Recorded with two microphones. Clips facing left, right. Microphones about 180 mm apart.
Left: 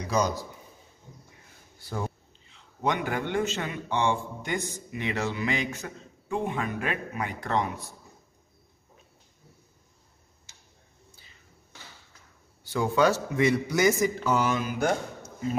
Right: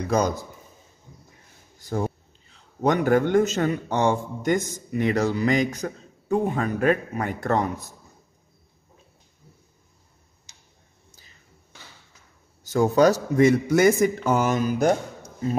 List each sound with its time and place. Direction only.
0.0 s a man's voice: 55° right (ahead or behind)
1.8 s a man's voice: 45° right (ahead or behind)
12.6 s a man's voice: 45° right (ahead or behind)